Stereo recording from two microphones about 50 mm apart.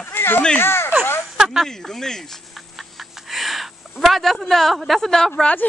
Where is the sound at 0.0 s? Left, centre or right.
Left.